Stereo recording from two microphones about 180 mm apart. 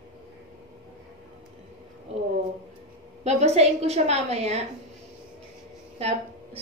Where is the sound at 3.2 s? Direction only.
35° right (ahead or behind).